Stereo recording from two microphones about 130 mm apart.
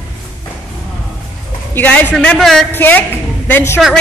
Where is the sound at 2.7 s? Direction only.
15° left (ahead or behind).